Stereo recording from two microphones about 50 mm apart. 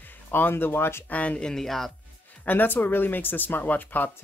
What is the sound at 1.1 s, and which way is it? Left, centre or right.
Speech, left.